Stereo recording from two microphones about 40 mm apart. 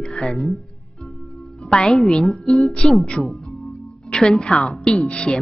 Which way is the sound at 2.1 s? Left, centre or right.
Left.